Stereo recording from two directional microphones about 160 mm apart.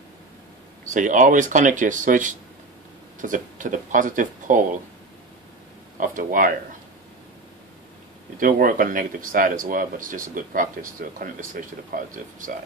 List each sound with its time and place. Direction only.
0.8 s speech: 55° right (ahead or behind)
5.9 s speech: 55° right (ahead or behind)
8.4 s speech: 60° right (ahead or behind)